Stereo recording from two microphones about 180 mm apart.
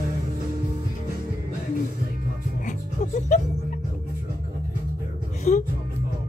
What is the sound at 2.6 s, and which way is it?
Music, 45° left (ahead or behind).